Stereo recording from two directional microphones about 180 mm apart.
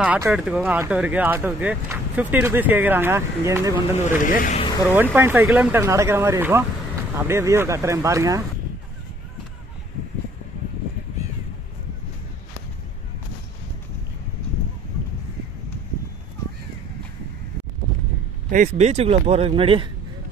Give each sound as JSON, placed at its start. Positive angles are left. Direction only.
{"t": 0.0, "sound": "speech", "side_deg": -5}
{"t": 4.2, "sound": "speech", "side_deg": 50}
{"t": 4.6, "sound": "vehicle", "side_deg": 25}
{"t": 5.1, "sound": "speech", "side_deg": -10}
{"t": 18.5, "sound": "speech", "side_deg": -40}